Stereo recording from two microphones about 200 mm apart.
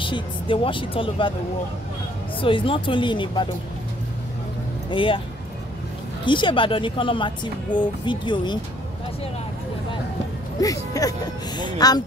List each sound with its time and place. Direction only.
0.0 s speech: 25° left (ahead or behind)
2.4 s speech: 25° left (ahead or behind)
4.9 s speech: 25° left (ahead or behind)
6.2 s speech: 25° left (ahead or behind)
10.6 s speech: 15° left (ahead or behind)